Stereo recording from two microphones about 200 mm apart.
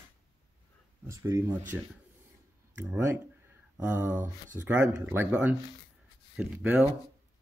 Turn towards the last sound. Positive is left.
turn(degrees=-10)  # may be behind; listen again after turning